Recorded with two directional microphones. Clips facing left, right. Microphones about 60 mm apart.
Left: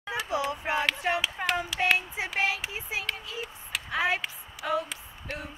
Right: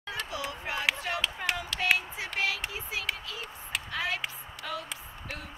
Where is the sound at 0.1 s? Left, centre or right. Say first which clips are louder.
Left 7 dB; left.